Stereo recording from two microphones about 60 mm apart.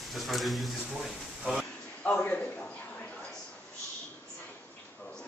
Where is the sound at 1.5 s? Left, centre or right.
Centre.